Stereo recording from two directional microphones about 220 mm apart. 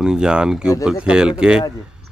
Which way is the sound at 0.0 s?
5° right (ahead or behind).